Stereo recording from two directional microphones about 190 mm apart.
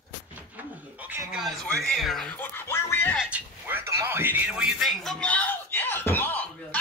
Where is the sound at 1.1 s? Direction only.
Centre (ahead or behind).